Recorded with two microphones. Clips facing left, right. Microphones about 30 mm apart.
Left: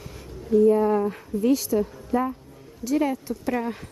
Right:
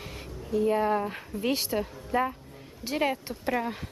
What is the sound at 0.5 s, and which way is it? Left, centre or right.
Speech, right.